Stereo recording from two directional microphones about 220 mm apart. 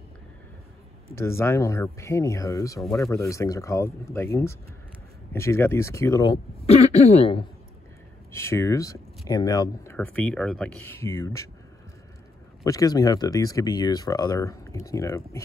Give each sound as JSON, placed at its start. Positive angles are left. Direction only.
{"t": 1.1, "sound": "speech", "side_deg": 10}
{"t": 8.3, "sound": "speech", "side_deg": 10}
{"t": 9.9, "sound": "speech", "side_deg": 5}
{"t": 12.6, "sound": "speech", "side_deg": 15}